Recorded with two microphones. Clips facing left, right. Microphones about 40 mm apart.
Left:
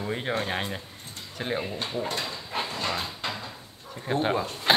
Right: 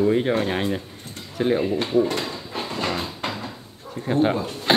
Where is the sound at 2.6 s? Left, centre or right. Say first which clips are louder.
Right 4 dB; right.